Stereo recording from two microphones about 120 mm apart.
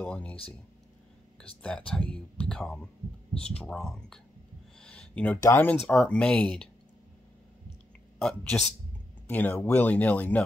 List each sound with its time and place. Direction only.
0.0 s speech: 10° left (ahead or behind)
1.6 s speech: 10° left (ahead or behind)
4.8 s a sound: 10° left (ahead or behind)
5.4 s speech: 20° left (ahead or behind)
5.9 s speech: 10° left (ahead or behind)
8.2 s a man's voice: 5° left (ahead or behind)